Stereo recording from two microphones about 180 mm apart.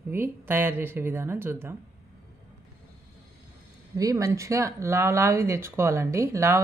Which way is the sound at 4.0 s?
20° right (ahead or behind).